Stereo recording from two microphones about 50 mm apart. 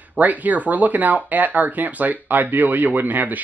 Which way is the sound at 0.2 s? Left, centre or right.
Right.